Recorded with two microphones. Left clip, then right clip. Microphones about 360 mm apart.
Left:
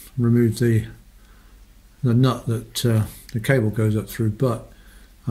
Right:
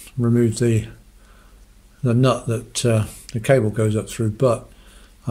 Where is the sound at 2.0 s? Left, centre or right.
Centre.